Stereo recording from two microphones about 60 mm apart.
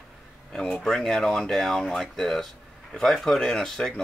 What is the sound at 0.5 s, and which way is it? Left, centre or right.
Speech, centre.